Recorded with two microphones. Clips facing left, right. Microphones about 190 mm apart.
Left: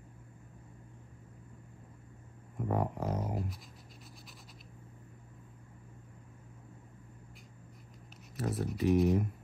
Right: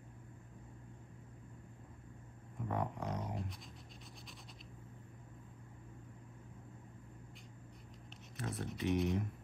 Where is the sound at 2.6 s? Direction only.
40° left (ahead or behind).